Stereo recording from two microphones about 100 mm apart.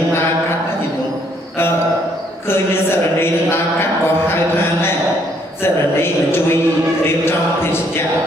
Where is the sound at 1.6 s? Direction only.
20° left (ahead or behind).